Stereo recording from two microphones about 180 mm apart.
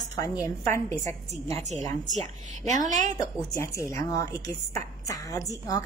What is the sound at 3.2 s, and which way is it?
A woman's voice, 20° left (ahead or behind).